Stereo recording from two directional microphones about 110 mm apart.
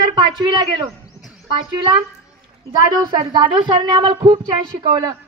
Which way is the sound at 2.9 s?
35° right (ahead or behind).